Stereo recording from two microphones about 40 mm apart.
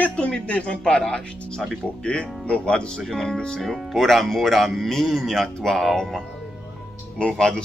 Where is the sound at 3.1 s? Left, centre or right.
Centre.